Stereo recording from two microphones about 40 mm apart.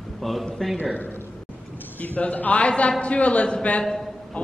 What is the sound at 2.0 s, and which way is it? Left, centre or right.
Speech, left.